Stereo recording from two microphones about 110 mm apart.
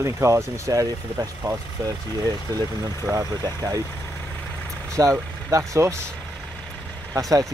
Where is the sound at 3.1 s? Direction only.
30° right (ahead or behind).